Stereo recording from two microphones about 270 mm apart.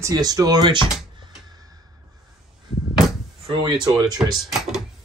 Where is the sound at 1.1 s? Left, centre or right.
Centre.